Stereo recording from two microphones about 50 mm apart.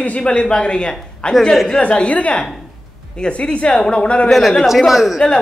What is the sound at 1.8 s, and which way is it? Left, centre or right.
A man's voice, left.